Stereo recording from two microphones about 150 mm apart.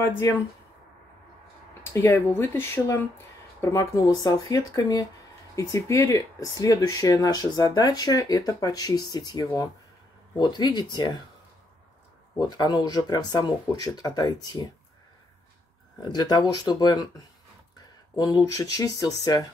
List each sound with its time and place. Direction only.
1.9 s speech: 15° left (ahead or behind)
12.4 s speech: 30° left (ahead or behind)
16.1 s speech: 25° left (ahead or behind)
18.4 s speech: 20° left (ahead or behind)